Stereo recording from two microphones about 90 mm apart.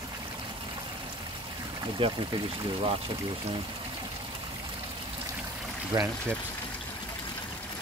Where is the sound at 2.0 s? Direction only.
75° right (ahead or behind).